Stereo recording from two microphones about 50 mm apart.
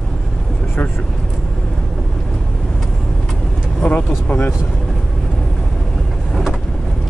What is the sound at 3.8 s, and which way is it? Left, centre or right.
Vehicle, left.